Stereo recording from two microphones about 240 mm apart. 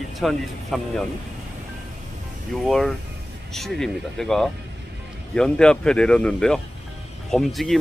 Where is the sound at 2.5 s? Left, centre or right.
Centre.